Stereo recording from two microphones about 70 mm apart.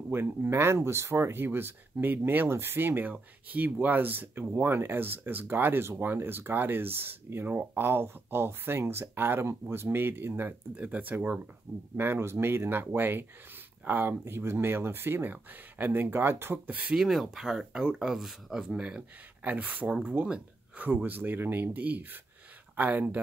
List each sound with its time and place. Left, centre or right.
0.1 s speech: right
16.6 s speech: right
16.9 s speech: centre; by 23.2 s right